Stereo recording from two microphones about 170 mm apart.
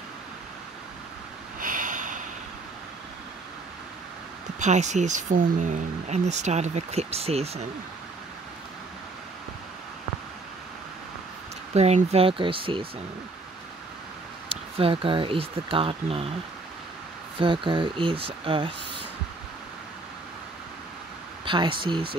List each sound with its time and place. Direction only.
1.6 s a sound: 50° right (ahead or behind)
4.6 s speech: 45° right (ahead or behind)
11.7 s speech: 40° right (ahead or behind)
14.5 s speech: 35° right (ahead or behind)
17.4 s speech: 30° right (ahead or behind)
21.5 s speech: 30° right (ahead or behind)